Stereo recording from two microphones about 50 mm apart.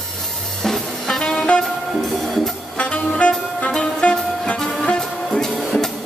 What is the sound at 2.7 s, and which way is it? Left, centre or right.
Jazz, left.